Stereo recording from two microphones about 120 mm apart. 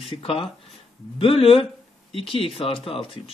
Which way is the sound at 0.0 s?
50° left (ahead or behind).